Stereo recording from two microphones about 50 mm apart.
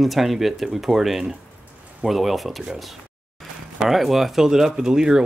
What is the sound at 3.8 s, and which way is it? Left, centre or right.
Speech, centre.